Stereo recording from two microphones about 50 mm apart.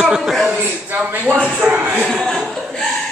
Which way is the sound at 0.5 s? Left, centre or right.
Right.